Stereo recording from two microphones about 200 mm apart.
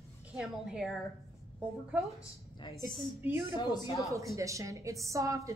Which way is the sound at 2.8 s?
15° right (ahead or behind).